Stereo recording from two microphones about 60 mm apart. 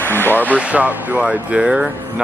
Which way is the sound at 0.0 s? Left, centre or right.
Left.